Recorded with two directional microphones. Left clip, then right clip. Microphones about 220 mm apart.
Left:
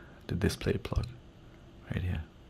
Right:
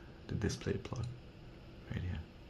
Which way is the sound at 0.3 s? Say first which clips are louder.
Left 7 dB; 50° left (ahead or behind).